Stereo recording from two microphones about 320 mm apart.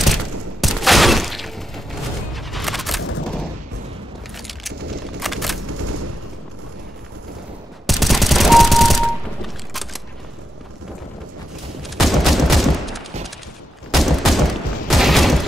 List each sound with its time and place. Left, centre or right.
0.0 s fusillade: centre
5.2 s single-lens reflex camera: centre
5.7 s a sound: right
7.8 s machine gun: centre
11.8 s fusillade: centre